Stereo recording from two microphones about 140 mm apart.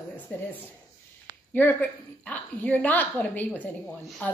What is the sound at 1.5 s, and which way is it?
A woman's voice, 10° left (ahead or behind).